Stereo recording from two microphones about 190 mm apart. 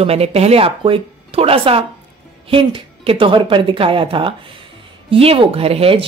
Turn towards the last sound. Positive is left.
turn(degrees=-30)  # may be behind; listen again after turning